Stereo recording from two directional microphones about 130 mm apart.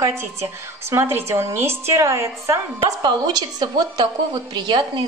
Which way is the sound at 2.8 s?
35° right (ahead or behind).